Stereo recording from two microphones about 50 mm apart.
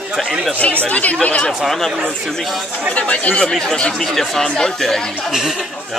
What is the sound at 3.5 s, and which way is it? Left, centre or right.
Speech, centre.